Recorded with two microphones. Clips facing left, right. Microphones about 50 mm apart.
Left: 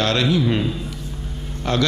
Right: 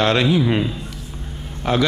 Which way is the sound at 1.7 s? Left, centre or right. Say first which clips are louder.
Right 2 dB; centre.